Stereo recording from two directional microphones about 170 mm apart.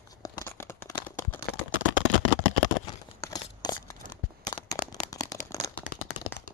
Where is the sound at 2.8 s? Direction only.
20° left (ahead or behind).